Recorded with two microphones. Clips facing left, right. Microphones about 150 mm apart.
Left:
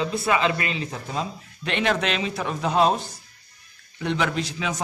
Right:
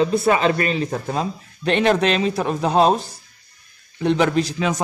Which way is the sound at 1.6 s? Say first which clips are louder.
Right 7 dB; 40° right (ahead or behind).